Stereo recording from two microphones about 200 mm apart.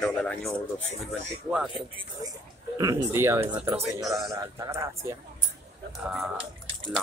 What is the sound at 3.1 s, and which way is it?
A man's voice, 15° right (ahead or behind).